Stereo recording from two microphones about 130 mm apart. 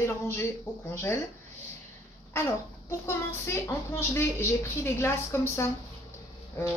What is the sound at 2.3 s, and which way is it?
A child's voice, 20° left (ahead or behind).